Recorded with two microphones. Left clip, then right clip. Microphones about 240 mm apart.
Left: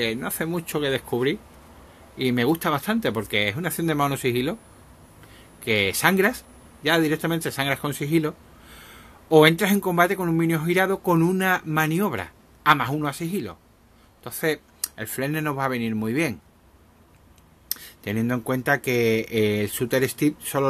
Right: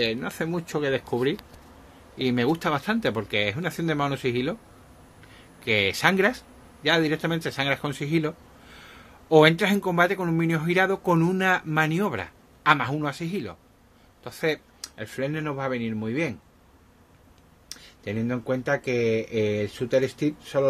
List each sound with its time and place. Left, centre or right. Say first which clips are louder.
0.0 s speech: even; centre; by 16.3 s left
17.6 s speech: left 3 dB; left